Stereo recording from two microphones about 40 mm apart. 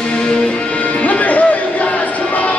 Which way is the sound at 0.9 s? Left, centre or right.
Left.